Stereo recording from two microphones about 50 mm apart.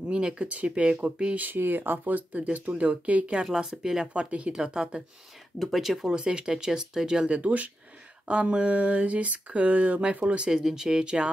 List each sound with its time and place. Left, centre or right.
0.1 s speech: right
1.4 s speech: right
3.5 s speech: centre
4.1 s speech: right
5.6 s speech: centre